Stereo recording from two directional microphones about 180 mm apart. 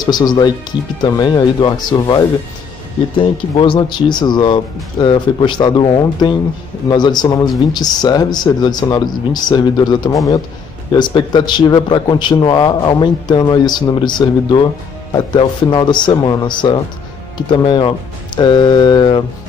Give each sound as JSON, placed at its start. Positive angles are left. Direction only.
{"t": 0.0, "sound": "a man's voice", "side_deg": 25}